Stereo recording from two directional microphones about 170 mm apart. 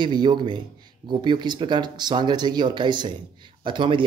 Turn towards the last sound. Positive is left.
turn(degrees=-30)  # may be behind; listen again after turning